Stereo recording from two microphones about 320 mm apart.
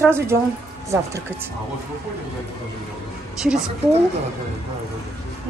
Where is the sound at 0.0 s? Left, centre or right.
Centre.